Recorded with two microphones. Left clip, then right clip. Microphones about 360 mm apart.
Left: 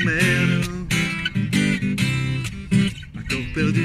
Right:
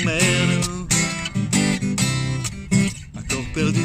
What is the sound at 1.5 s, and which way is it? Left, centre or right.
Music, centre.